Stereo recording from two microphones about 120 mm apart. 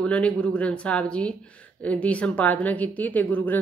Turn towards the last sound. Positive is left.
turn(degrees=15)  # may be behind; listen again after turning